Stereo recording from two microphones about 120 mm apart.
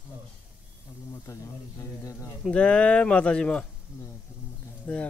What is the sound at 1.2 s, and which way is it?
Speech, 25° left (ahead or behind).